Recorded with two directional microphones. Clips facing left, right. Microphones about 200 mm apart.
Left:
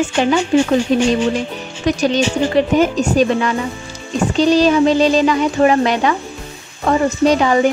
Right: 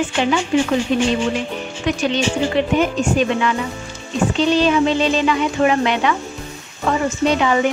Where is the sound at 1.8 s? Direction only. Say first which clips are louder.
Left 4 dB; 40° left (ahead or behind).